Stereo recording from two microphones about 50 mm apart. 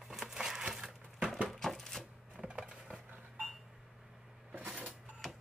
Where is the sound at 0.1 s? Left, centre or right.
Centre.